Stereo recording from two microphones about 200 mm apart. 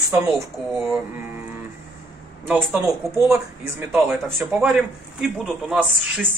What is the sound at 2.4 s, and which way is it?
Speech, centre (ahead or behind).